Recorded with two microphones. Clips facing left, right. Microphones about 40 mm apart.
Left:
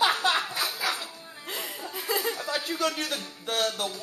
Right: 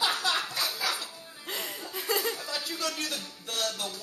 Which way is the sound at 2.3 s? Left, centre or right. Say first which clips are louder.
Left 5 dB; left.